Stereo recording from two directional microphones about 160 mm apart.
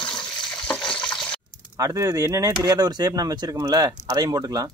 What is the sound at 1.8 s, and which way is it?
Speech, 20° right (ahead or behind).